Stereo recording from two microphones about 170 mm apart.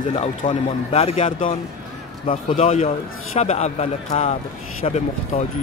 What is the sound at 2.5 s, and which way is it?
A man's voice, 40° left (ahead or behind).